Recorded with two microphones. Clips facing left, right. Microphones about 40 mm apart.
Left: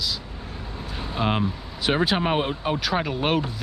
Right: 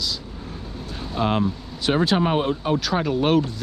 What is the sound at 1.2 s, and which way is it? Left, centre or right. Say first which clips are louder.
Speech: right 3 dB; centre.